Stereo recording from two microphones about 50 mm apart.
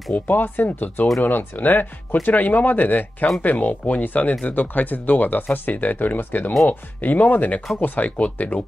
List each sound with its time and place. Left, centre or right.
0.1 s speech: left